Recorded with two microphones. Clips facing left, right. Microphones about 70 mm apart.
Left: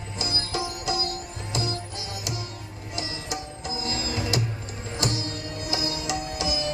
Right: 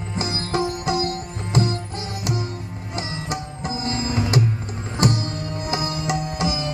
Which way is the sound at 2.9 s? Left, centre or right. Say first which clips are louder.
Right 4 dB; right.